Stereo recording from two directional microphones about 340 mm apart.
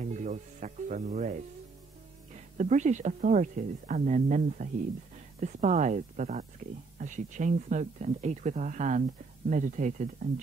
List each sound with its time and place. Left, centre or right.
0.0 s speech: right
2.5 s speech: right